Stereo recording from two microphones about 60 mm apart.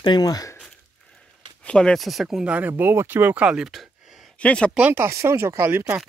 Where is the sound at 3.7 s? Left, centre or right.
Centre.